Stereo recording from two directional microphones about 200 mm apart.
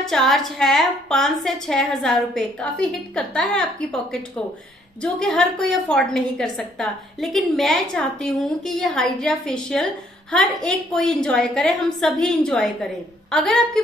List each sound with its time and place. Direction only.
0.0 s a woman's voice: centre (ahead or behind)
5.0 s a woman's voice: centre (ahead or behind)